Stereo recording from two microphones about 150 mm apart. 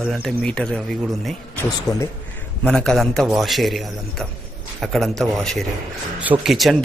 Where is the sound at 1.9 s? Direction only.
25° left (ahead or behind).